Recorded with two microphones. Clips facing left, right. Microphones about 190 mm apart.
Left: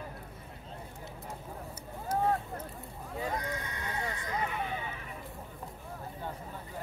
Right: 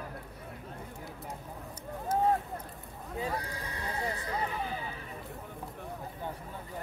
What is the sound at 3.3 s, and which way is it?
Horse, 35° right (ahead or behind).